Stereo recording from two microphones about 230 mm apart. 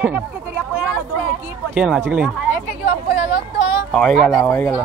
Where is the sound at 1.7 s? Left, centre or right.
Centre.